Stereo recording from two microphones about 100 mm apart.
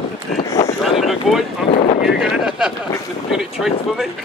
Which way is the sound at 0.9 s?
Centre (ahead or behind).